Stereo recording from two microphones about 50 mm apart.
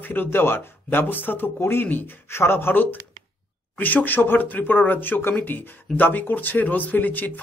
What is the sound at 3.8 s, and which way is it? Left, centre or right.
Speech, left.